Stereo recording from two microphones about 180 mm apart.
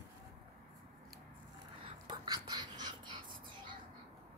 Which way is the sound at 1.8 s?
25° right (ahead or behind).